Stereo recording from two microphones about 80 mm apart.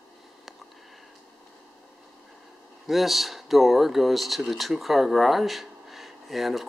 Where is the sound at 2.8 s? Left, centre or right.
Centre.